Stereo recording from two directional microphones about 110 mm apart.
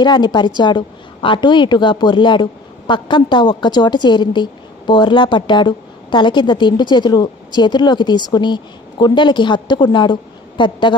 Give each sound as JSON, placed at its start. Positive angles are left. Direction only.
{"t": 0.0, "sound": "a woman's voice", "side_deg": 40}